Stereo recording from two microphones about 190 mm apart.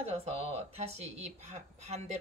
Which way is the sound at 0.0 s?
35° right (ahead or behind).